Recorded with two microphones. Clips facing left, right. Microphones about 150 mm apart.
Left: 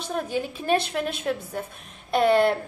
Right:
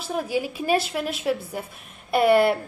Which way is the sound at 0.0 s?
5° right (ahead or behind).